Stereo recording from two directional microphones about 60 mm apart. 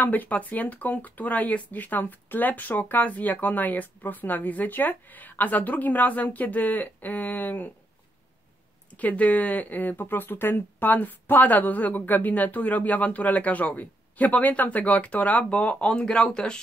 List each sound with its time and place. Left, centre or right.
0.0 s speech: left
8.9 s speech: left